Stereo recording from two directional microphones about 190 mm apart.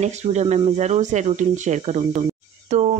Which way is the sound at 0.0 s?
35° right (ahead or behind).